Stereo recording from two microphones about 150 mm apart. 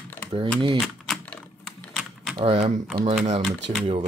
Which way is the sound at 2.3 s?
40° right (ahead or behind).